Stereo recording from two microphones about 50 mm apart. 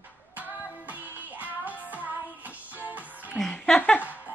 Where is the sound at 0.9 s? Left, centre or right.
Right.